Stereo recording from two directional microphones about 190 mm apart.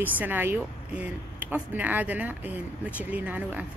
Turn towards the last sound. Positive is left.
turn(degrees=-10)  # may be behind; listen again after turning